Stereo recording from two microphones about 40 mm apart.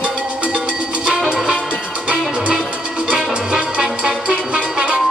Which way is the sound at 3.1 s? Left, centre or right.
Right.